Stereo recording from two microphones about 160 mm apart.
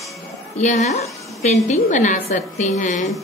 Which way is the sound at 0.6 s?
50° left (ahead or behind).